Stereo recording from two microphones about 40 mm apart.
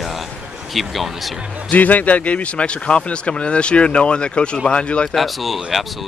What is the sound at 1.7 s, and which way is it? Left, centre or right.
Speech, left.